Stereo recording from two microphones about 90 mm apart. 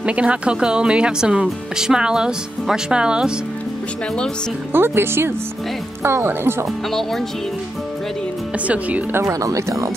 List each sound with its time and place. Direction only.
0.0 s speech: 15° right (ahead or behind)
4.7 s speech: 25° right (ahead or behind)
6.9 s speech: 5° left (ahead or behind)
8.6 s speech: 15° right (ahead or behind)
9.2 s speech: 40° right (ahead or behind)